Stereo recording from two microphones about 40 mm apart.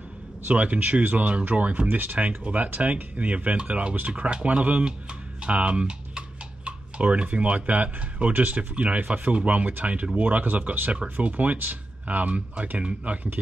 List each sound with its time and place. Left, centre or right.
0.5 s speech: right
11.5 s speech: right